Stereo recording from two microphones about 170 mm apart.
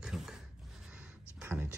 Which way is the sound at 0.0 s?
5° right (ahead or behind).